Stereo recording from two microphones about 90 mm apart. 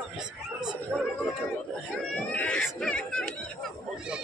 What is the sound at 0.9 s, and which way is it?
Speech, 20° right (ahead or behind).